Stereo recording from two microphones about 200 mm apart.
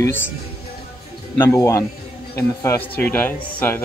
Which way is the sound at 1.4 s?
15° left (ahead or behind).